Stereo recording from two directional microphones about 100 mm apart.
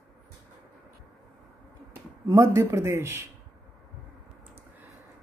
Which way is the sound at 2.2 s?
30° right (ahead or behind).